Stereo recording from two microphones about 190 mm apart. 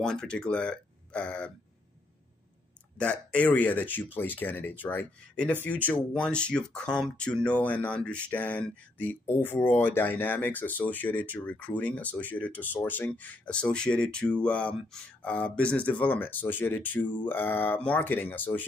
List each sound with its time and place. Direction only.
0.0 s speech: 5° left (ahead or behind)
3.0 s speech: 5° left (ahead or behind)